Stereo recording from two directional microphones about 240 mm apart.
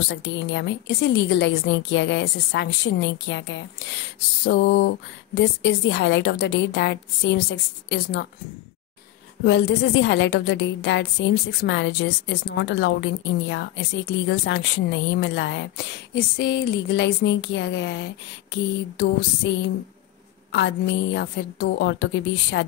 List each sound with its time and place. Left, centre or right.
0.1 s a woman's voice: left
9.4 s a woman's voice: left
20.5 s a woman's voice: left